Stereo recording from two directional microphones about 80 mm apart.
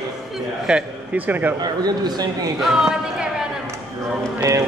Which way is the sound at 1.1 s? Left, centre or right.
Right.